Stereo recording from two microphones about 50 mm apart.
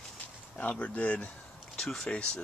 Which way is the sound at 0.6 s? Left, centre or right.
Left.